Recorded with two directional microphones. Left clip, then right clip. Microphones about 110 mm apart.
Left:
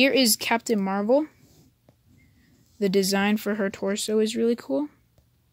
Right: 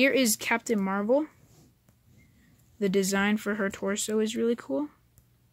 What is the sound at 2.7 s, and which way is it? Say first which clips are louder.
Speech: left 3 dB; 45° left (ahead or behind).